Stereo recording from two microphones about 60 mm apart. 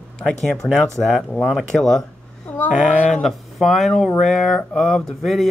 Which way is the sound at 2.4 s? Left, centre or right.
Left.